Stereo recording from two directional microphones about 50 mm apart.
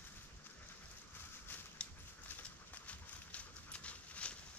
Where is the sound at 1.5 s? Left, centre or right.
Left.